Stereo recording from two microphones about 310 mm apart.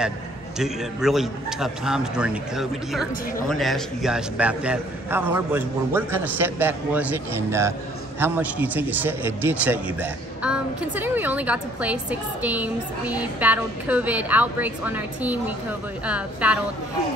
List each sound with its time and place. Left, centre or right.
0.6 s a man's voice: centre